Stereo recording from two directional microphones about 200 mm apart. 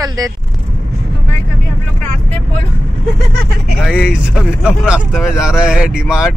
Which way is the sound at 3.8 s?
5° right (ahead or behind).